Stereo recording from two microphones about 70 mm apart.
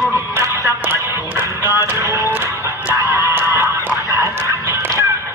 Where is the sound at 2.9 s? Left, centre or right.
Right.